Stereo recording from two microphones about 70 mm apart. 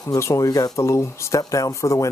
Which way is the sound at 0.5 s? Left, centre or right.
Left.